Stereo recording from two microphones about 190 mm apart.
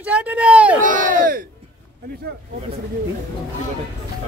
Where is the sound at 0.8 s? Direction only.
45° right (ahead or behind).